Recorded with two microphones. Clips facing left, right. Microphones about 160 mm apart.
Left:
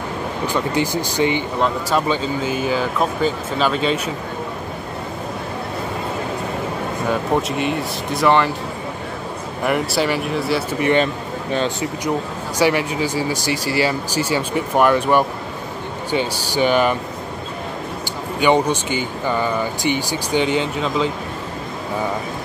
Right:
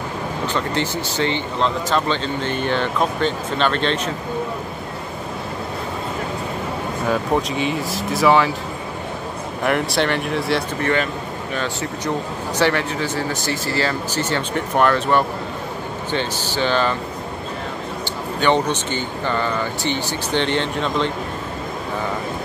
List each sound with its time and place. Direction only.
0.5 s speech: 10° left (ahead or behind)
7.1 s speech: centre (ahead or behind)
9.6 s speech: centre (ahead or behind)
10.8 s a man's voice: 20° left (ahead or behind)
12.5 s speech: 10° left (ahead or behind)
18.4 s speech: 10° left (ahead or behind)